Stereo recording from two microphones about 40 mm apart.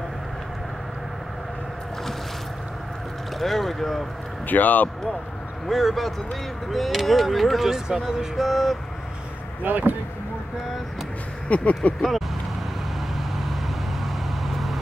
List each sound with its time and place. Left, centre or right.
3.3 s speech: centre
4.5 s speech: left
5.7 s speech: centre
9.6 s speech: right
11.4 s speech: left
14.0 s vehicle: centre